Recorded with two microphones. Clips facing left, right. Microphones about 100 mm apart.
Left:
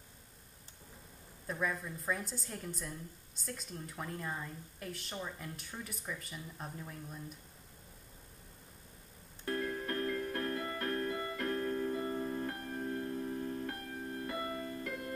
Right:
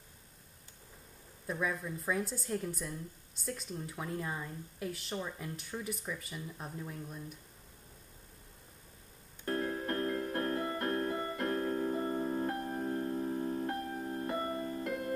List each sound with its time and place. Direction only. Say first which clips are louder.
1.5 s speech: right 2 dB; 5° right (ahead or behind)
9.5 s music: right 2 dB; 30° right (ahead or behind)